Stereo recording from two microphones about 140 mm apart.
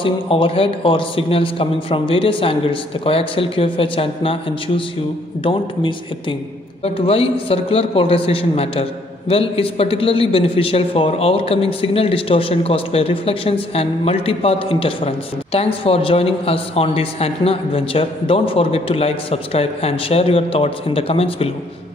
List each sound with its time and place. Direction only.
0.0 s a man's voice: 40° left (ahead or behind)